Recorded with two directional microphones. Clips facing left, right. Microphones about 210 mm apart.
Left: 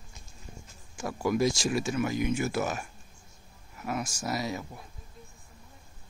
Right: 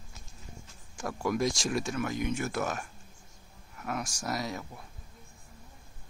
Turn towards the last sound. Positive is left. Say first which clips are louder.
# left 2 dB
turn(degrees=5)  # may be behind; listen again after turning